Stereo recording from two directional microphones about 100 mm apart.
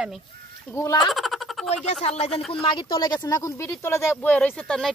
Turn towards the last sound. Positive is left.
turn(degrees=5)  # may be behind; listen again after turning